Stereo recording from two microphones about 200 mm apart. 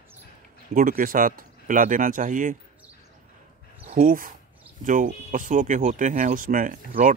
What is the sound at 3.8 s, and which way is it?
Speech, 45° right (ahead or behind).